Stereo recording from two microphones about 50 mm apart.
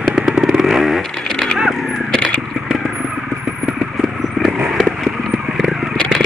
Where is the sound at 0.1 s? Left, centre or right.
Centre.